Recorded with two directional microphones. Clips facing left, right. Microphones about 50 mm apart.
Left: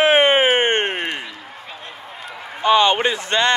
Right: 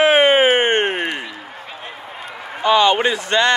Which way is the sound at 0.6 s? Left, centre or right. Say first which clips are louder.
Right 2 dB; right.